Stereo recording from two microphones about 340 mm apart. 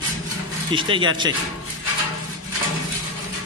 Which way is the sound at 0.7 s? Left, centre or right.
Centre.